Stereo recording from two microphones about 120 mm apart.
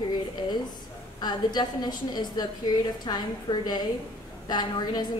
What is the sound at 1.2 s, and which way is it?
A woman's voice, 35° left (ahead or behind).